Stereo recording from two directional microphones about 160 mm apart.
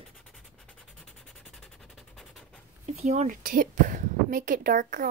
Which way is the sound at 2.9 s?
45° right (ahead or behind).